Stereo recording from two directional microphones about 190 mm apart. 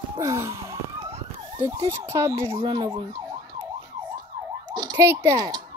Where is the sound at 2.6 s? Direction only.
25° right (ahead or behind).